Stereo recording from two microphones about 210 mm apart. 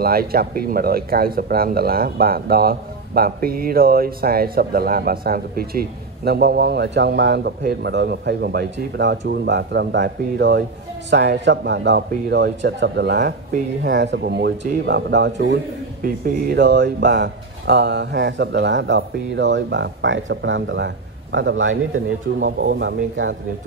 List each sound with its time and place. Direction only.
0.0 s speech: 45° right (ahead or behind); by 23.3 s 60° right (ahead or behind)